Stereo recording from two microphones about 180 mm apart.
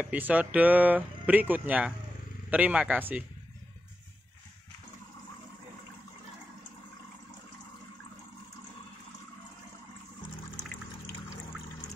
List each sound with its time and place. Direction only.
0.0 s speech: 10° right (ahead or behind)